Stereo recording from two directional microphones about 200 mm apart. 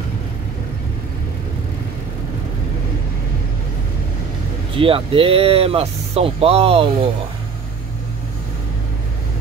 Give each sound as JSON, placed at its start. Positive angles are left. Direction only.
{"t": 4.7, "sound": "speech", "side_deg": -25}